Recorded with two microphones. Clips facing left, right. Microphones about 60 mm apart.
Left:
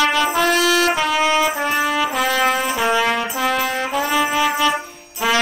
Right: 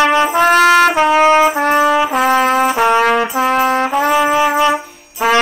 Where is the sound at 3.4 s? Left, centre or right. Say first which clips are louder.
Right 7 dB; right.